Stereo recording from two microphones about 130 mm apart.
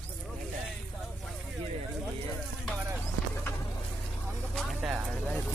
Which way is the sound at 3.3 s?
20° left (ahead or behind).